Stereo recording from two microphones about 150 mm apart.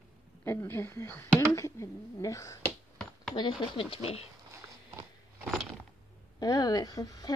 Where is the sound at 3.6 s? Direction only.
35° left (ahead or behind).